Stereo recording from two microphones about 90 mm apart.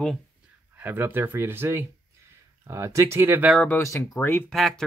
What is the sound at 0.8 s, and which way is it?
Speech, 25° right (ahead or behind).